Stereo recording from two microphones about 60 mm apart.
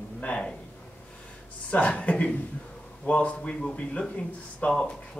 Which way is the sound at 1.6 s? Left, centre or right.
Left.